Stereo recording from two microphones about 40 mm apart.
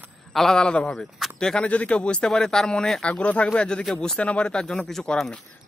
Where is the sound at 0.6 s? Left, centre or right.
Left.